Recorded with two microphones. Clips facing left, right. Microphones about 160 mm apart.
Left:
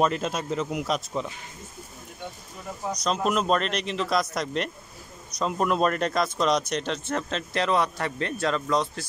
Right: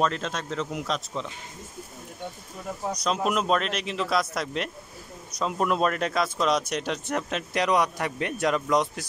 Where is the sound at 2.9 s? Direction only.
5° right (ahead or behind).